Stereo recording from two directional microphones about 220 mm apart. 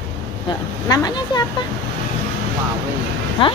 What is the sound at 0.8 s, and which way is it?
Speech, 20° left (ahead or behind).